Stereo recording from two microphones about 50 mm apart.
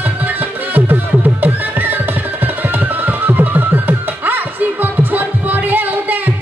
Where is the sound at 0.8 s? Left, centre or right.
Right.